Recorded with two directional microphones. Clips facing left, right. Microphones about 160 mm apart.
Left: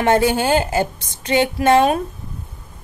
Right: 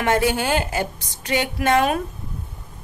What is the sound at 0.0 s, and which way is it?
A woman's voice, 30° left (ahead or behind).